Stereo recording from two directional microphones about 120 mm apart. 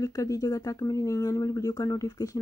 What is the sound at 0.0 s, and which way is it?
Speech, 30° left (ahead or behind).